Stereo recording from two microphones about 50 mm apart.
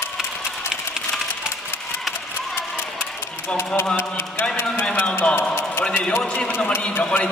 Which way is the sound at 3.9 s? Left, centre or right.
Left.